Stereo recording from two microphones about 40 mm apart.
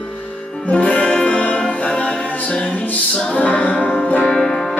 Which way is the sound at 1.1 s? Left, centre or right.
Left.